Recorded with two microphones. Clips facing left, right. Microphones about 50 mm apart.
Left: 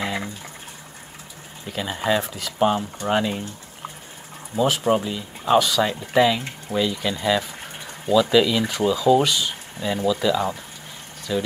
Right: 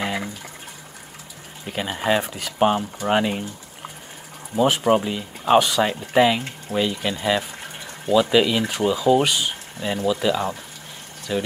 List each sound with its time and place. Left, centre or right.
0.0 s a sound: centre
1.7 s speech: centre
2.2 s speech: centre
2.6 s speech: right
4.6 s speech: centre